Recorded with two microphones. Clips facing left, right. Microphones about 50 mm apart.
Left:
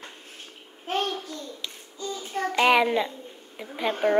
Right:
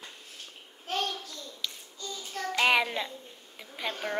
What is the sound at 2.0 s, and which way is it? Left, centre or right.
Child singing, left.